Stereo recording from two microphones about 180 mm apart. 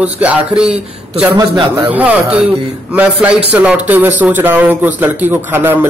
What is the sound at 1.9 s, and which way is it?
A man's voice, 10° right (ahead or behind).